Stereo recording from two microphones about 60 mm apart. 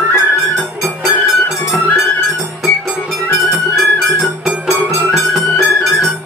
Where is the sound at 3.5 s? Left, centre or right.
Centre.